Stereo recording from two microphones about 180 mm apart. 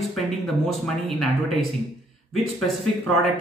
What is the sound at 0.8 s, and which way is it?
Speech, centre (ahead or behind).